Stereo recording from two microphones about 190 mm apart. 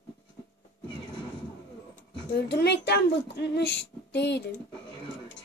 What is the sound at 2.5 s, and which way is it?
A woman's voice, 60° left (ahead or behind).